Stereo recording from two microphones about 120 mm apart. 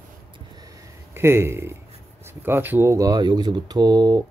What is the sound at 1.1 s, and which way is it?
A man's voice, 20° right (ahead or behind).